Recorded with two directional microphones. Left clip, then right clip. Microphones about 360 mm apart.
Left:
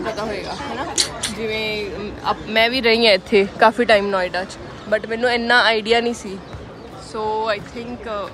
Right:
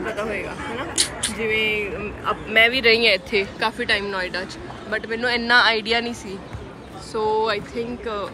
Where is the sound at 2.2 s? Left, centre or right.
Left.